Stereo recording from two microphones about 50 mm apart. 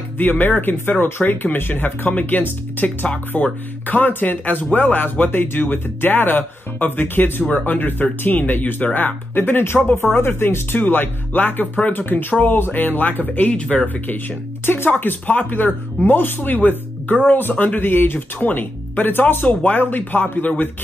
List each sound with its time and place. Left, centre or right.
0.2 s speech: left
15.0 s speech: left